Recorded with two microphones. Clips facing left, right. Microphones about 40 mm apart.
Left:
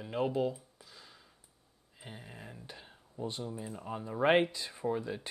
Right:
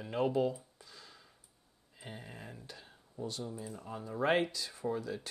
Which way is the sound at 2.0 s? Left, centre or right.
Centre.